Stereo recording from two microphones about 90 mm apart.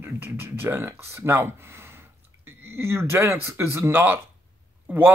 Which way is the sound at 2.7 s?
25° right (ahead or behind).